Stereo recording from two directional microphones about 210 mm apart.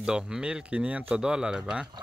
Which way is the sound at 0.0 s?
5° right (ahead or behind).